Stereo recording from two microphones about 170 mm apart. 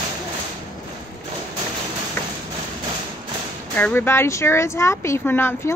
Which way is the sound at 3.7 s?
10° left (ahead or behind).